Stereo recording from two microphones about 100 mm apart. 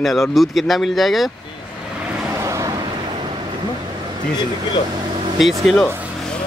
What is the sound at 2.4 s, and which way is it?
Vehicle, 30° right (ahead or behind).